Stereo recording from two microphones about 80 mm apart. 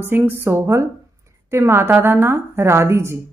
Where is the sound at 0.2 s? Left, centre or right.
Right.